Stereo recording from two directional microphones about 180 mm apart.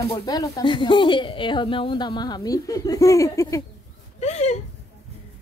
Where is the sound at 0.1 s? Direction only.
20° left (ahead or behind).